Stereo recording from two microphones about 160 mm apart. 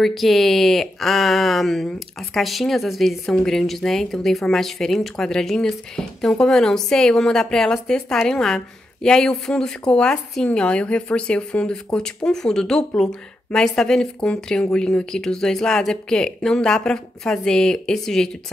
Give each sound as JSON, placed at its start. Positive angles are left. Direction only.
{"t": 0.0, "sound": "speech", "side_deg": 0}